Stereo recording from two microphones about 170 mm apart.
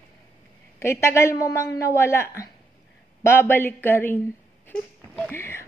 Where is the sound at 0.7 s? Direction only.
15° left (ahead or behind).